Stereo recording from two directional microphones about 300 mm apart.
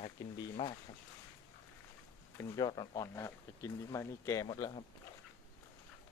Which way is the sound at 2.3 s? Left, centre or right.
Centre.